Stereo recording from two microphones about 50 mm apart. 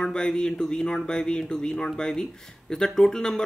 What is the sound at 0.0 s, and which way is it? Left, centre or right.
Speech, centre.